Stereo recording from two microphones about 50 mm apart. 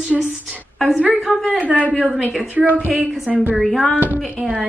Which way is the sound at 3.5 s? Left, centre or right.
Centre.